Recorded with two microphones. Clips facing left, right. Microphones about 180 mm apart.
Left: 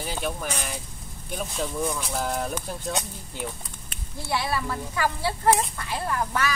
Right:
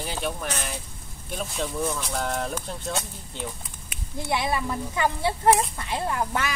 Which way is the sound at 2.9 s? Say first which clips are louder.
Even; 15° left (ahead or behind).